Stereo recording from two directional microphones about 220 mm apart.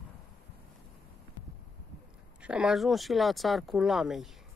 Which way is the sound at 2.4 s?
5° right (ahead or behind).